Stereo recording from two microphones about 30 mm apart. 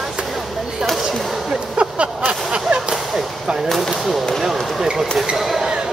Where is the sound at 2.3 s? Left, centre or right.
Right.